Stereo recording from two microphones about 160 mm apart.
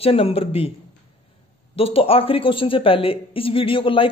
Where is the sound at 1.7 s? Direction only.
35° left (ahead or behind).